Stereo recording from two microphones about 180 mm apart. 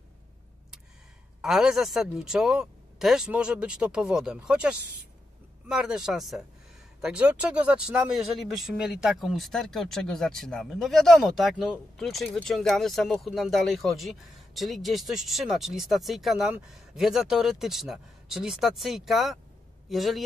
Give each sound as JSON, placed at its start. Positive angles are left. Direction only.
{"t": 1.4, "sound": "speech", "side_deg": 0}